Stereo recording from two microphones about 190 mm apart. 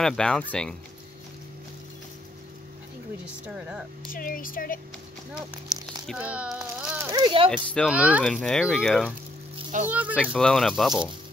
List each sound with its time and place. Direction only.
0.0 s speech: 5° left (ahead or behind)
3.4 s speech: 5° right (ahead or behind)
4.1 s speech: 45° left (ahead or behind)
5.7 s a sound: 20° right (ahead or behind)
6.0 s a child's voice: 5° right (ahead or behind)
7.2 s speech: 25° right (ahead or behind)
7.5 s speech: 5° left (ahead or behind)
7.9 s speech: 5° right (ahead or behind)
8.2 s speech: 5° left (ahead or behind)
10.3 s speech: 5° left (ahead or behind)